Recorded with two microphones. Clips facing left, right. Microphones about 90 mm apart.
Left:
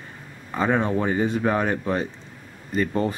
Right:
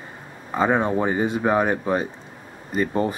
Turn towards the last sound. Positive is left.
turn(degrees=-10)  # may be behind; listen again after turning